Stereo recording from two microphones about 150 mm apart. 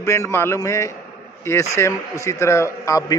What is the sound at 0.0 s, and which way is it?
A man's voice, 20° left (ahead or behind).